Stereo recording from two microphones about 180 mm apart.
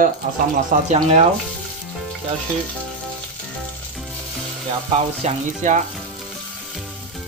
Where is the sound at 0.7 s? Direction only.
45° right (ahead or behind).